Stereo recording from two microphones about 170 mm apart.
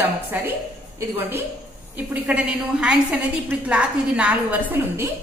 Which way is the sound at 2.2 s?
5° right (ahead or behind).